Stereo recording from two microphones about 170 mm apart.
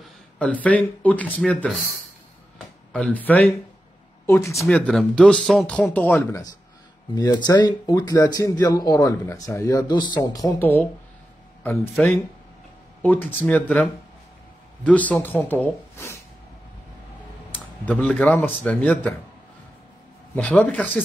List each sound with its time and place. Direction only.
0.4 s speech: 10° left (ahead or behind)
2.9 s speech: 5° left (ahead or behind)
4.6 s speech: 5° left (ahead or behind); by 10.4 s 25° left (ahead or behind)
10.6 s speech: 10° left (ahead or behind)
11.9 s speech: 5° left (ahead or behind)
17.8 s speech: 5° left (ahead or behind)
20.3 s speech: 10° left (ahead or behind)